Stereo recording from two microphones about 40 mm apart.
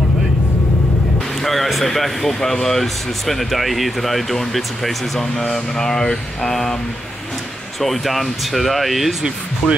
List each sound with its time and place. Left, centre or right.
1.4 s speech: centre
5.5 s mantra: centre
7.8 s speech: centre
9.6 s speech: centre